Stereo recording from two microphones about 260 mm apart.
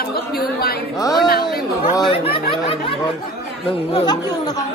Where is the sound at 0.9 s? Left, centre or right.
Centre.